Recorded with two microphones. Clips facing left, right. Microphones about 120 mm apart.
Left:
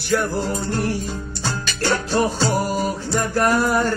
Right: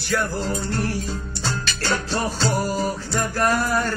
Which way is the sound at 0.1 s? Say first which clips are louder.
Left 3 dB; 20° left (ahead or behind).